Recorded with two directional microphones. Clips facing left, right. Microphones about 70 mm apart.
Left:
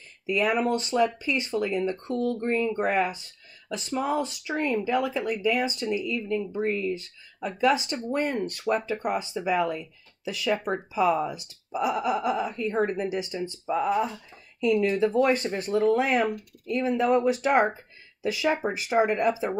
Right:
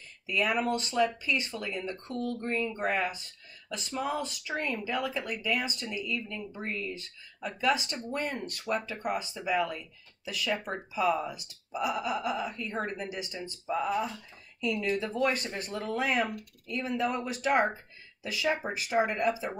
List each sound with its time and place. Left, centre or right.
0.3 s speech: left